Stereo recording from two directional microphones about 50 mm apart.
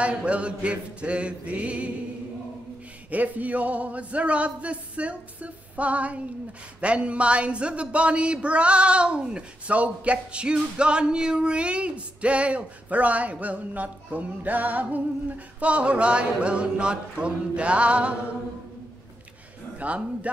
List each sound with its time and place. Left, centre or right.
0.0 s speech: right
3.1 s speech: right